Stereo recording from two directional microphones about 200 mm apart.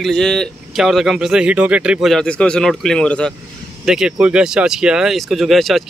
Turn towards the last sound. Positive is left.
turn(degrees=0)  # may be behind; listen again after turning